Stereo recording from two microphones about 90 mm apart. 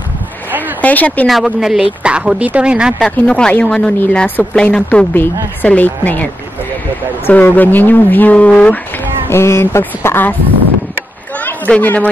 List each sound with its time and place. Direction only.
0.5 s a sound: 20° right (ahead or behind)
0.7 s speech: 20° left (ahead or behind)
1.2 s speech: centre (ahead or behind)
3.0 s speech: 10° left (ahead or behind)
4.8 s speech: 20° left (ahead or behind)
7.2 s speech: 20° left (ahead or behind)
11.3 s a sound: 20° left (ahead or behind)